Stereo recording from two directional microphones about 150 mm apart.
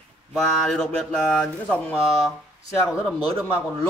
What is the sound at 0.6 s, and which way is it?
Speech, 5° left (ahead or behind).